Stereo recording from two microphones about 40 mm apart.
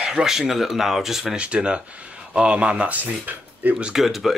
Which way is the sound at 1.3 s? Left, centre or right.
Right.